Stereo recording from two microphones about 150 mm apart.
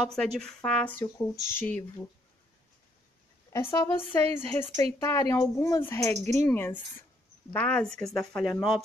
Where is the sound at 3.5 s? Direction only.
20° left (ahead or behind).